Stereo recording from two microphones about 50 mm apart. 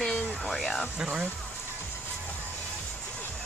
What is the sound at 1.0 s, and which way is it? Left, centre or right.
Speech, centre.